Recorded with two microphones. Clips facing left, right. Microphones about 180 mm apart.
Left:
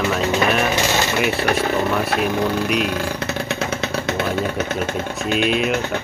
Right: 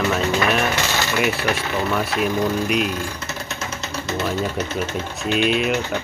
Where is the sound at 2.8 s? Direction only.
60° left (ahead or behind).